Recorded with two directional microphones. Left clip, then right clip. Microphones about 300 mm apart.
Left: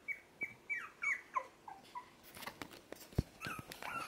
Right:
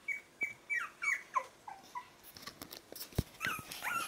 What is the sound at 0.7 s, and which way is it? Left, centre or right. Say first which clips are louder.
Squawk: right 3 dB; centre.